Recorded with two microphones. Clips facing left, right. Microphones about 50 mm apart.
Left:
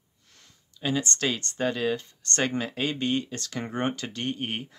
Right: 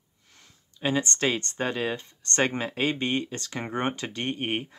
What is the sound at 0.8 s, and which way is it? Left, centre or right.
Speech, right.